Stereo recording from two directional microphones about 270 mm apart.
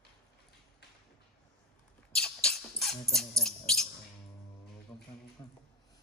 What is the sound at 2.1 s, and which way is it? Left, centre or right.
Dog, centre.